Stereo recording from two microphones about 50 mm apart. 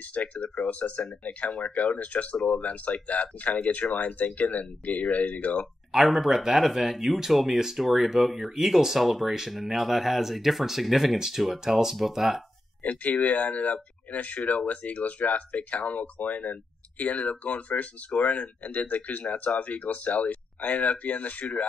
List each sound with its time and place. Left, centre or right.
0.1 s speech: left
5.9 s speech: centre
12.8 s speech: left